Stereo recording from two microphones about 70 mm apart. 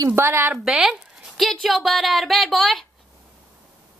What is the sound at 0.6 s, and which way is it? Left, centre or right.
Speech, centre.